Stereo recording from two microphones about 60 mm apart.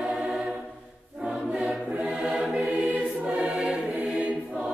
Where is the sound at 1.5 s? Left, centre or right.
Centre.